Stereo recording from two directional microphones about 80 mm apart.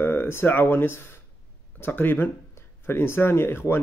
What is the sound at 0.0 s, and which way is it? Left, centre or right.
A man's voice, left.